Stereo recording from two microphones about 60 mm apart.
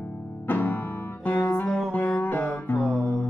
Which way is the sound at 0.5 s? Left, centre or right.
Left.